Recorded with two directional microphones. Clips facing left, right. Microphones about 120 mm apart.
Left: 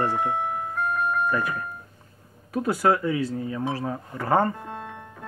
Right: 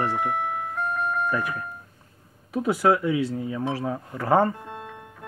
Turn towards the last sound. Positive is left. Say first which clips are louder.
# right 2 dB
turn(degrees=-5)  # may be behind; listen again after turning